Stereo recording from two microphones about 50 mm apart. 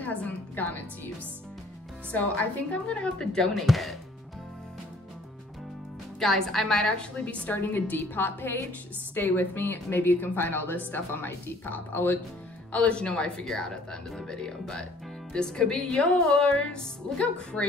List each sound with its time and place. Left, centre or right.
0.0 s music: left
2.1 s speech: left; by 3.6 s centre
3.6 s speech: centre
6.1 s speech: centre
7.4 s a woman's voice: left
12.7 s speech: left